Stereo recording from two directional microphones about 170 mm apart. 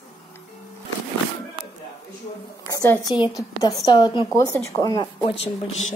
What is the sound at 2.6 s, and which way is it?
A woman's voice, 20° left (ahead or behind).